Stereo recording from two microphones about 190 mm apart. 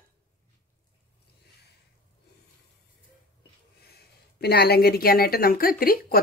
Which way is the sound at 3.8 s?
55° left (ahead or behind).